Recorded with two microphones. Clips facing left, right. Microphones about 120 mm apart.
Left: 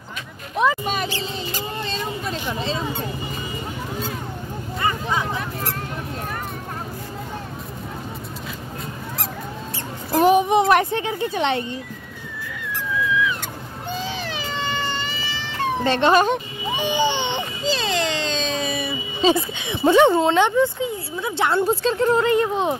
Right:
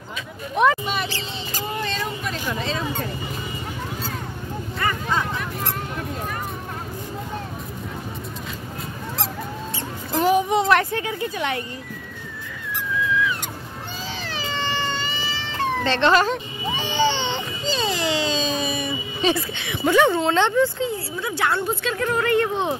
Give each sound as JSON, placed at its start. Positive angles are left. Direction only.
{"t": 0.8, "sound": "mouse", "side_deg": 45}
{"t": 1.8, "sound": "a sound", "side_deg": 30}
{"t": 4.7, "sound": "vehicle", "side_deg": 20}
{"t": 10.1, "sound": "a sound", "side_deg": 20}
{"t": 14.7, "sound": "baby cry", "side_deg": 0}
{"t": 15.8, "sound": "baby cry", "side_deg": 15}
{"t": 17.6, "sound": "a sound", "side_deg": 0}
{"t": 19.2, "sound": "speech", "side_deg": 20}
{"t": 21.5, "sound": "speech", "side_deg": 35}